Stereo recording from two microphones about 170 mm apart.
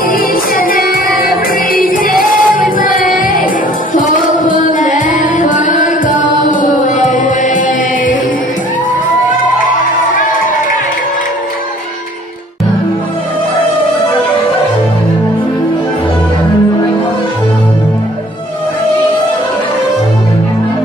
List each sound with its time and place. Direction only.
0.1 s music: 55° left (ahead or behind)
9.8 s music: 50° left (ahead or behind)